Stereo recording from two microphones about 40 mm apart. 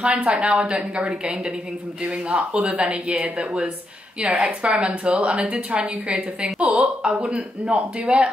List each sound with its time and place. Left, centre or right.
0.0 s speech: right
0.3 s a woman's voice: right
0.6 s speech: right
2.0 s a woman's voice: right